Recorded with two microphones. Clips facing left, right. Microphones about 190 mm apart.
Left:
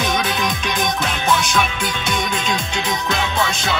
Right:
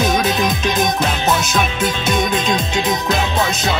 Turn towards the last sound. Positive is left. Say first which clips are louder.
# right 3 dB
turn(degrees=-20)  # may be behind; listen again after turning